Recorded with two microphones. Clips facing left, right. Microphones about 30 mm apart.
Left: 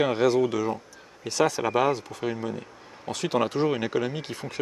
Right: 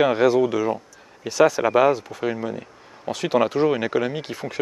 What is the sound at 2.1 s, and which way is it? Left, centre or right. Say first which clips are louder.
Speech: right 4 dB; centre.